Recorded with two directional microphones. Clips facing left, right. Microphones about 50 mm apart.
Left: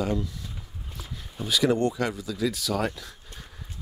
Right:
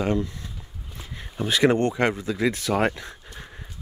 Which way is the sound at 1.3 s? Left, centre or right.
Right.